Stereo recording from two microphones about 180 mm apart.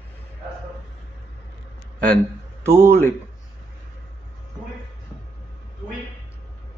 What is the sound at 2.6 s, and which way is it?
Speech, 15° right (ahead or behind).